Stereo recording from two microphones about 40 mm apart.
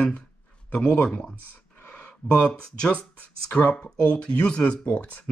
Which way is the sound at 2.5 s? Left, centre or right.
Left.